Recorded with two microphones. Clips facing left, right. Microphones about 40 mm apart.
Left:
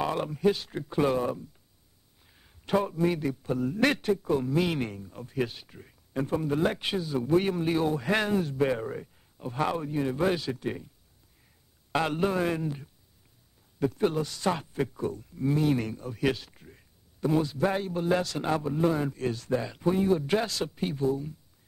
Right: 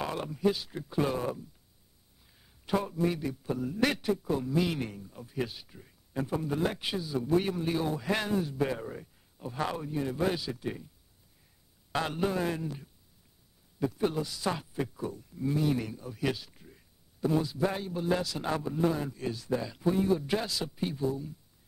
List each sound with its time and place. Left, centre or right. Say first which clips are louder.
0.0 s a man's voice: left 4 dB; centre
2.2 s a sound: left 3 dB; centre
2.6 s a man's voice: left 3 dB; left
11.9 s a man's voice: left 4 dB; left
14.2 s speech: left 3 dB; left
14.5 s a man's voice: left 4 dB; left
19.1 s speech: left 4 dB; left
19.5 s a man's voice: left 1 dB; left